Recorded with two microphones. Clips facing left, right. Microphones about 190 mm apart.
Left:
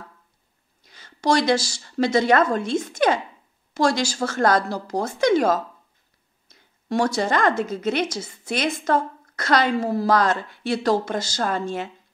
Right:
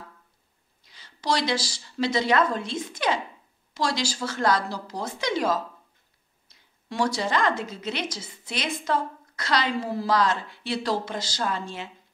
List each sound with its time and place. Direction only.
0.8 s a woman's voice: 50° left (ahead or behind)